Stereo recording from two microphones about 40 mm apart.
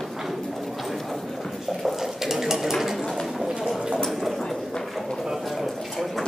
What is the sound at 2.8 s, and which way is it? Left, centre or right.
Bird, centre.